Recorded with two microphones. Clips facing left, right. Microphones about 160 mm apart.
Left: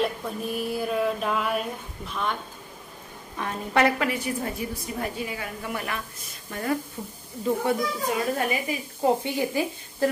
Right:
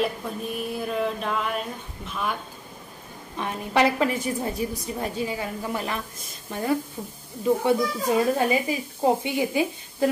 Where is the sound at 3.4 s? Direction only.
20° right (ahead or behind).